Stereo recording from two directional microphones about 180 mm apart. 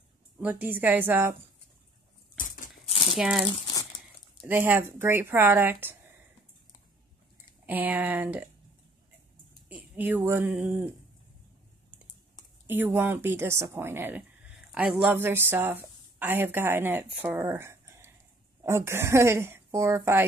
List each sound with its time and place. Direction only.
0.4 s speech: 10° right (ahead or behind)
2.3 s a sound: 50° left (ahead or behind)
3.2 s speech: 5° right (ahead or behind)
4.5 s speech: 10° right (ahead or behind)
7.6 s speech: 10° right (ahead or behind)
9.9 s speech: 10° right (ahead or behind)
12.6 s a woman's voice: 10° right (ahead or behind)